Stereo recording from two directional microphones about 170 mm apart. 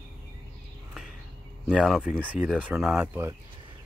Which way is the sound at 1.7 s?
Centre (ahead or behind).